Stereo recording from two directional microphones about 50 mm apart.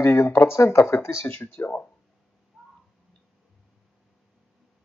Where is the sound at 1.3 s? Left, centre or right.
Left.